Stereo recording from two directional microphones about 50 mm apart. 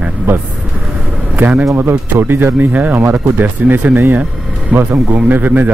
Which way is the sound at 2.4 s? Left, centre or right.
Right.